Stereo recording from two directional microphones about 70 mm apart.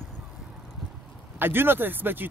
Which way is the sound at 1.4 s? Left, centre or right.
Right.